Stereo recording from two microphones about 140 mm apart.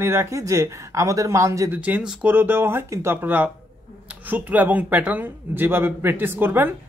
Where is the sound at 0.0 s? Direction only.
15° right (ahead or behind).